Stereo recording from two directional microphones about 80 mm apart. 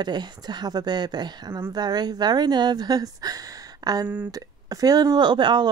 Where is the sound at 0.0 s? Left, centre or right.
Right.